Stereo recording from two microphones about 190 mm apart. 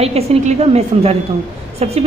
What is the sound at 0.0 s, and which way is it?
A woman's voice, 35° right (ahead or behind).